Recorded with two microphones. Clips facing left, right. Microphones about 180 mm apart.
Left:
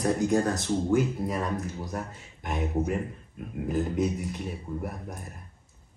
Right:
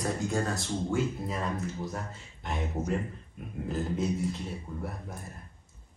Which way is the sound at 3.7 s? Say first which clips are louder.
Left 3 dB; 15° left (ahead or behind).